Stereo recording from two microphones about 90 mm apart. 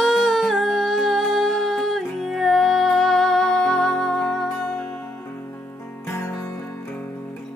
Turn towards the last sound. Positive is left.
turn(degrees=30)  # may be behind; listen again after turning